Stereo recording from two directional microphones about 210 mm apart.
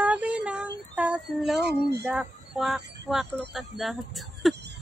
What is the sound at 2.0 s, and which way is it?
Speech, centre (ahead or behind).